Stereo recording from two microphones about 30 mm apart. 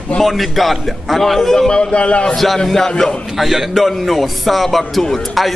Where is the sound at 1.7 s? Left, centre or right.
Left.